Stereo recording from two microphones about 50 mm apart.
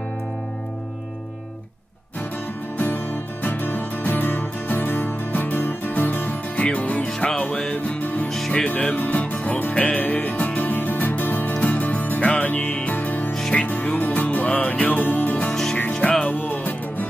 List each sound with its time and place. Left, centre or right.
2.8 s music: left
7.2 s music: centre
7.7 s music: left
12.5 s music: centre
12.8 s music: left
13.3 s music: centre
13.6 s music: left
15.5 s music: centre
16.0 s music: centre
16.3 s music: left